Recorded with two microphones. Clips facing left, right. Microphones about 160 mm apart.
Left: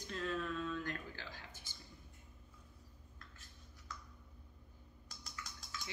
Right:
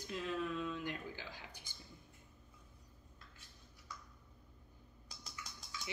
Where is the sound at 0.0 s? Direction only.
15° right (ahead or behind).